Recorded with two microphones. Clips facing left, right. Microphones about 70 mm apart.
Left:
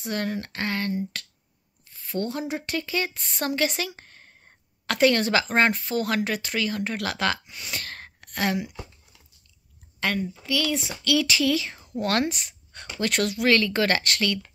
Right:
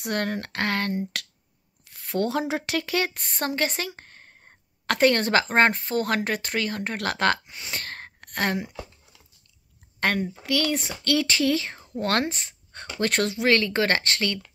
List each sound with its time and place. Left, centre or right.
0.0 s speech: right
3.3 s a woman's voice: right
7.5 s speech: right
9.9 s a sound: right
10.4 s a woman's voice: right